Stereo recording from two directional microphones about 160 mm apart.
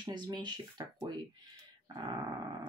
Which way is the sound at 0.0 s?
25° right (ahead or behind).